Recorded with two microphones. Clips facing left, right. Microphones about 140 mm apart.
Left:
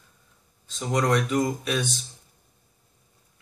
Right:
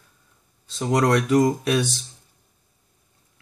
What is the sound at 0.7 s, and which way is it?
Speech, 75° right (ahead or behind).